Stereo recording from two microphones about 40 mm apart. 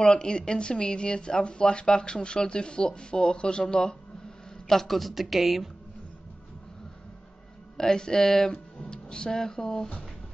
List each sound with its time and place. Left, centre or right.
0.0 s speech: centre
4.6 s a woman's voice: centre
7.7 s speech: centre